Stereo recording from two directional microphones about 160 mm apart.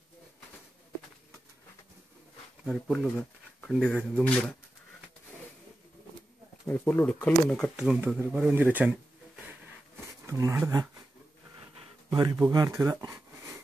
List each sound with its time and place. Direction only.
2.6 s speech: centre (ahead or behind)
4.2 s speech: 5° left (ahead or behind)
6.7 s speech: 10° left (ahead or behind)
7.7 s speech: 5° right (ahead or behind)
10.2 s speech: 20° right (ahead or behind)
12.1 s speech: 25° right (ahead or behind)